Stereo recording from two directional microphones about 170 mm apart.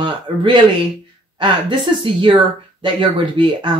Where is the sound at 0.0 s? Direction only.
30° right (ahead or behind).